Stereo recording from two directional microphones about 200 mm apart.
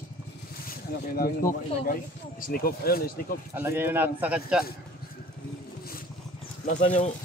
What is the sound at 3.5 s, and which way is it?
A man's voice, 10° right (ahead or behind).